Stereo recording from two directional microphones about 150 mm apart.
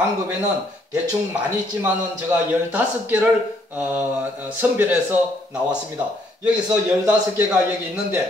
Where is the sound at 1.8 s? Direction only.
15° right (ahead or behind).